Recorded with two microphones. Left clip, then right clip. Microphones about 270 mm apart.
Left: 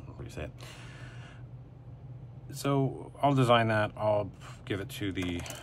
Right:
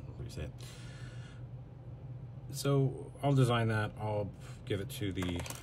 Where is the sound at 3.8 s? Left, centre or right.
Left.